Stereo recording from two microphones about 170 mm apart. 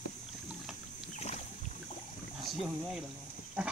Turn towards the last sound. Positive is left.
turn(degrees=-5)  # may be behind; listen again after turning